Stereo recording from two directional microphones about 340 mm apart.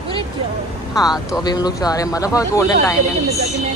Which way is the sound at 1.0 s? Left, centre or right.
Centre.